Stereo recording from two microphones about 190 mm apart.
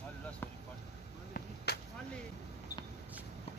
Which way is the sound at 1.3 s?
60° left (ahead or behind).